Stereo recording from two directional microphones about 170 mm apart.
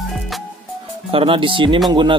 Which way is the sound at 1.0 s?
30° right (ahead or behind).